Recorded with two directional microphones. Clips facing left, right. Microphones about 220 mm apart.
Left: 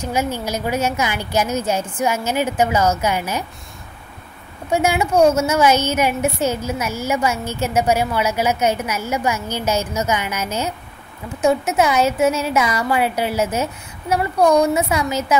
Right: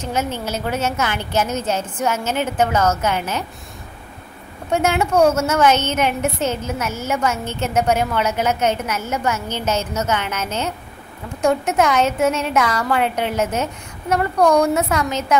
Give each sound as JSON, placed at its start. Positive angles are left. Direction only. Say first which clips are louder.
{"t": 0.0, "sound": "a woman's voice", "louder": "left 1 dB", "side_deg": 10}
{"t": 4.6, "sound": "a woman's voice", "louder": "even", "side_deg": 10}